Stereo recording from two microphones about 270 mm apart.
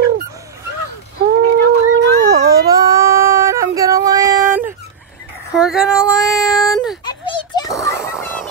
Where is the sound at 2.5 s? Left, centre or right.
Centre.